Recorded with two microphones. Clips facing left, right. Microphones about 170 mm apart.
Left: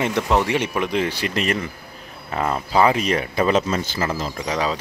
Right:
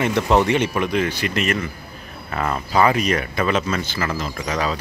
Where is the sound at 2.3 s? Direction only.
20° left (ahead or behind); by 4.0 s 35° left (ahead or behind).